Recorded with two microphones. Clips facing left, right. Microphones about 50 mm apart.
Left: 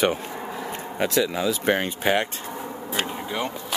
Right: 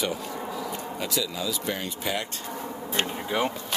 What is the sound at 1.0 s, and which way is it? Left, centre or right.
Speech, left.